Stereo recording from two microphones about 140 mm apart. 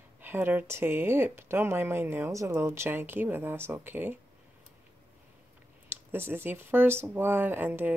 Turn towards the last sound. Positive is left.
turn(degrees=-15)  # may be behind; listen again after turning